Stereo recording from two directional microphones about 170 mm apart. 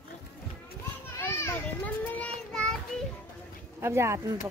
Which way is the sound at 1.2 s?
15° left (ahead or behind).